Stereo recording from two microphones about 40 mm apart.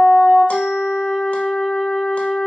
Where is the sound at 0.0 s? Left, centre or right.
Centre.